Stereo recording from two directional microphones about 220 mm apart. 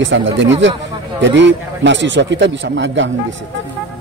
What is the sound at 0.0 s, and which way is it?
A man's voice, 55° right (ahead or behind).